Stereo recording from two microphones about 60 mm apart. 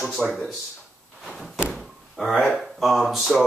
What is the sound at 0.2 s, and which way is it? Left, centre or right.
Speech, right.